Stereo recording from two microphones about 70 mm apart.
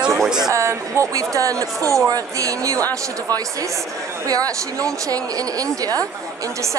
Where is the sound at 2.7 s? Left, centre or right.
Left.